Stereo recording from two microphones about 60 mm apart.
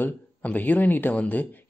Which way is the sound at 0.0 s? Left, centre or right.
Left.